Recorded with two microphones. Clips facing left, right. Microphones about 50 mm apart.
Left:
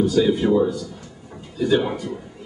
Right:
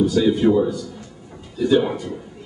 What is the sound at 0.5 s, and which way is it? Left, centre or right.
Speech, right.